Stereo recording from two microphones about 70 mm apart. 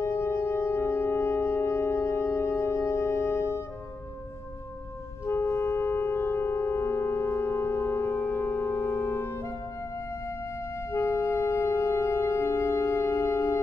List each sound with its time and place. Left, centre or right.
0.0 s music: left
5.2 s music: left